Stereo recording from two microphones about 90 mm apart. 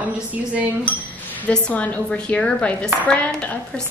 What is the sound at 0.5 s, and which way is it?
Speech, 15° right (ahead or behind).